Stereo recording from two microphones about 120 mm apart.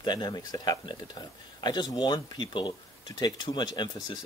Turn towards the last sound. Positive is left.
turn(degrees=35)  # may be behind; listen again after turning